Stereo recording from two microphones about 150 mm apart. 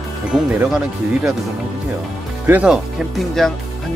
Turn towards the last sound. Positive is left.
turn(degrees=0)  # may be behind; listen again after turning